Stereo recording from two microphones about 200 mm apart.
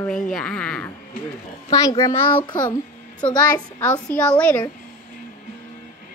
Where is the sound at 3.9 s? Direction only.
5° left (ahead or behind).